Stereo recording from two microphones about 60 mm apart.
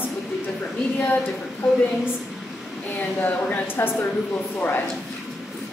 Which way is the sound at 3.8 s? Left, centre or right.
Left.